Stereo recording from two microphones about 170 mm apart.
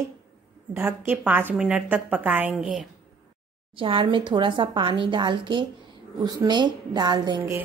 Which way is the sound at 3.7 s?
30° right (ahead or behind).